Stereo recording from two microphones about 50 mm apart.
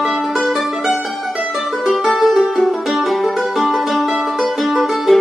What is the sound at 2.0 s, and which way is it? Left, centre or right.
Music, centre.